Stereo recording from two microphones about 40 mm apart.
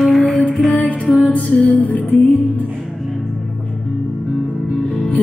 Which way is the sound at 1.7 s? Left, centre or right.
Left.